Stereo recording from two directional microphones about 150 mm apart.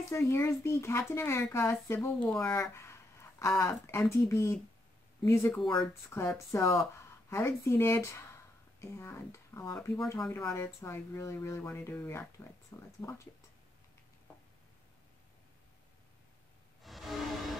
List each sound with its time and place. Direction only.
0.1 s speech: 20° left (ahead or behind)
5.7 s speech: 30° left (ahead or behind)
6.1 s speech: 20° left (ahead or behind)
16.8 s music: centre (ahead or behind)